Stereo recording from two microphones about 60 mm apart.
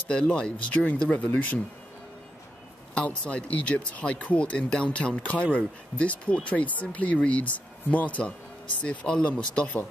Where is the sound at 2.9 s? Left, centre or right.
Centre.